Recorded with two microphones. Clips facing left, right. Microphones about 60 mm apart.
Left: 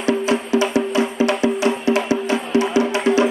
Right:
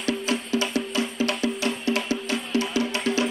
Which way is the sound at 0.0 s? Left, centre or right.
Left.